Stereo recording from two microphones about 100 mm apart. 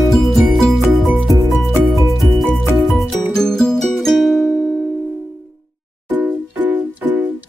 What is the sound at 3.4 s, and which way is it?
Music, 5° left (ahead or behind).